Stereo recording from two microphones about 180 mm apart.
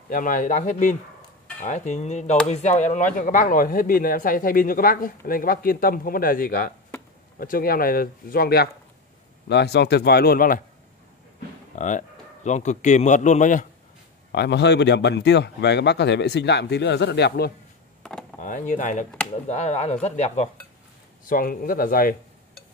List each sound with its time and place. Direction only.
0.1 s speech: 50° left (ahead or behind)
3.2 s speech: 50° left (ahead or behind)
9.5 s speech: 70° left (ahead or behind); by 10.6 s 55° left (ahead or behind)
11.7 s a man's voice: 45° left (ahead or behind)
14.3 s speech: 70° left (ahead or behind)
18.4 s speech: 45° left (ahead or behind)
21.3 s speech: 50° left (ahead or behind)